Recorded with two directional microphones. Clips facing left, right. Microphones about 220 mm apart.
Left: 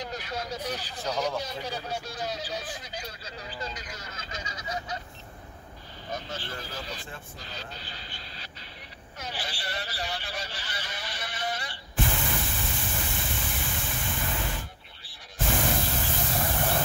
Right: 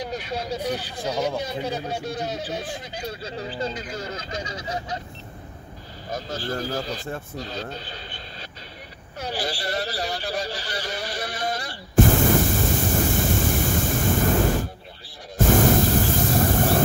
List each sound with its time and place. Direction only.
0.9 s speech: 10° right (ahead or behind); by 4.9 s 30° right (ahead or behind)
6.1 s speech: 40° right (ahead or behind)
9.2 s vehicle: 40° right (ahead or behind)
15.3 s a sound: 45° right (ahead or behind)